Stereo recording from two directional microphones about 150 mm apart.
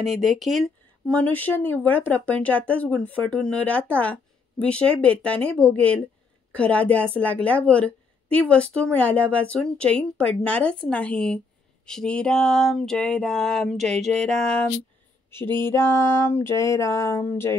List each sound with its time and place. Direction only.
0.0 s a woman's voice: centre (ahead or behind)
15.6 s a woman's voice: 15° left (ahead or behind)